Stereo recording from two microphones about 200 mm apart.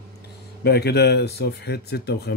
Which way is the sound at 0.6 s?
55° left (ahead or behind).